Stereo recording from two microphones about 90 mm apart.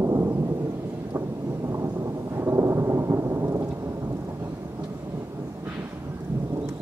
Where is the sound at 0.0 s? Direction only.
30° right (ahead or behind).